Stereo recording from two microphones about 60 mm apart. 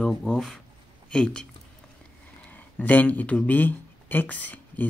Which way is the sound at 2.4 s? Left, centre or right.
Left.